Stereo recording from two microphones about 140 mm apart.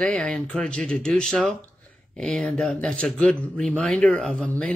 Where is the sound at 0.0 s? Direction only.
5° left (ahead or behind).